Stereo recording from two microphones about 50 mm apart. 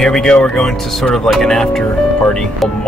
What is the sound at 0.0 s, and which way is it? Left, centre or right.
Speech, centre.